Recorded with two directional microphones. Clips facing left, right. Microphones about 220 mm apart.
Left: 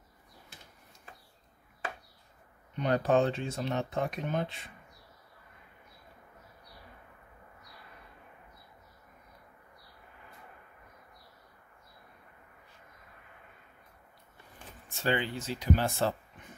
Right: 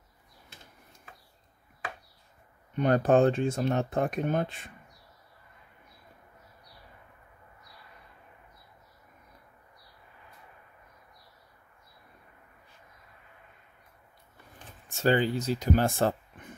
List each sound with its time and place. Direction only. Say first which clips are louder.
2.7 s speech: right 4 dB; 50° right (ahead or behind)
14.9 s speech: right 6 dB; 40° right (ahead or behind)